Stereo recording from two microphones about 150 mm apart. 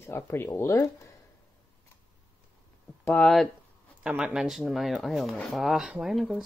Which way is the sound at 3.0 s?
5° left (ahead or behind).